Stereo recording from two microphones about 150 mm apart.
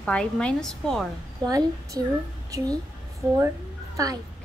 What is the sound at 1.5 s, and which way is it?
Speech, 25° right (ahead or behind).